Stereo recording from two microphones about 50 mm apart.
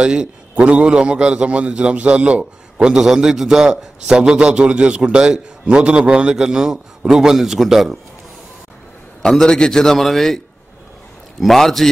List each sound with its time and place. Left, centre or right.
0.0 s a man's voice: centre
9.2 s a man's voice: centre